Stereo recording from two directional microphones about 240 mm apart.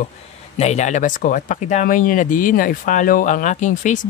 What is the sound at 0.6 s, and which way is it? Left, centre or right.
Speech, left.